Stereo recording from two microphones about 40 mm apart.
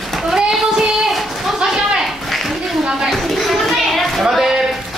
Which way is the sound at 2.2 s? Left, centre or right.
Centre.